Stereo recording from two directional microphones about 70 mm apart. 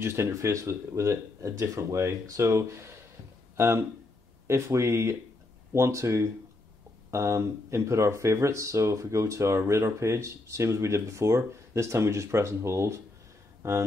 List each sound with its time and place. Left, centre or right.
0.0 s speech: right
0.3 s speech: right
13.6 s a sound: right